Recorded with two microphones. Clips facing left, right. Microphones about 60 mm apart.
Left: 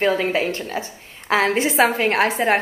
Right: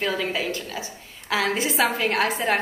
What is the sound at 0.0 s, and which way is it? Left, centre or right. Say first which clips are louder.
A woman's voice: left 6 dB; left.